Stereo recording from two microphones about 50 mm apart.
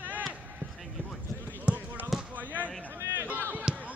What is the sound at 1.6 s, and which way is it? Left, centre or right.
Basketball bounce, right.